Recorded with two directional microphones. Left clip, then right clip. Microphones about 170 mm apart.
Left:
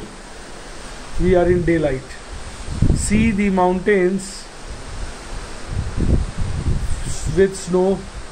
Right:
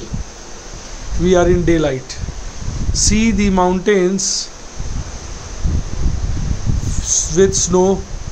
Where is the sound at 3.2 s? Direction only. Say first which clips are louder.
Even; 25° right (ahead or behind).